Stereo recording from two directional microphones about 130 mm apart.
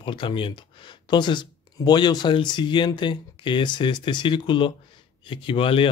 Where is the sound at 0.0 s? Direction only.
40° left (ahead or behind).